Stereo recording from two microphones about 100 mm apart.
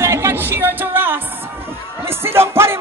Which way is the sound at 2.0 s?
25° right (ahead or behind).